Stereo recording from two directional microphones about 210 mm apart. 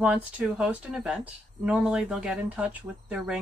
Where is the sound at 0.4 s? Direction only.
5° right (ahead or behind).